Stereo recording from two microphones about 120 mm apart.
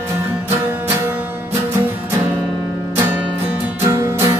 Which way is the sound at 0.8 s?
15° right (ahead or behind).